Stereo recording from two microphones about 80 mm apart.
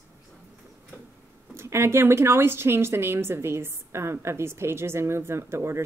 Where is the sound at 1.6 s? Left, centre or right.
Right.